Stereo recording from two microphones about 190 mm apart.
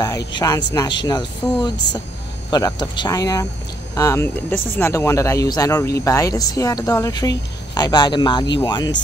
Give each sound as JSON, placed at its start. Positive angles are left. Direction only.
{"t": 0.3, "sound": "speech", "side_deg": 20}